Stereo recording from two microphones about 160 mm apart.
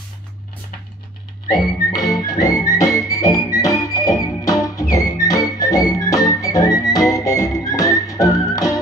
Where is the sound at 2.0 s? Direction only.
20° left (ahead or behind).